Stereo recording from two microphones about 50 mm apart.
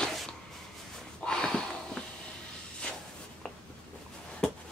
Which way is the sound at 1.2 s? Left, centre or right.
Centre.